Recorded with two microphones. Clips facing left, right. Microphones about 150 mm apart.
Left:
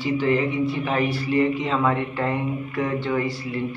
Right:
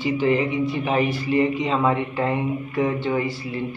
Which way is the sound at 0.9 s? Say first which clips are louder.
Right 2 dB; 20° right (ahead or behind).